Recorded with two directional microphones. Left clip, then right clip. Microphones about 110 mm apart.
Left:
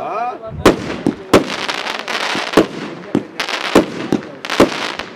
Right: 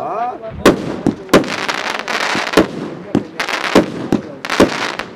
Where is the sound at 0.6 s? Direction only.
5° left (ahead or behind).